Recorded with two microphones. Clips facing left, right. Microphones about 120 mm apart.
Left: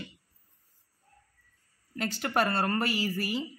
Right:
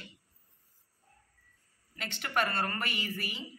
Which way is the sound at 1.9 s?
40° left (ahead or behind).